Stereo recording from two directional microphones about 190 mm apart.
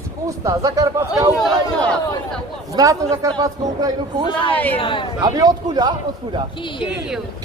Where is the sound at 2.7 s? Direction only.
20° right (ahead or behind).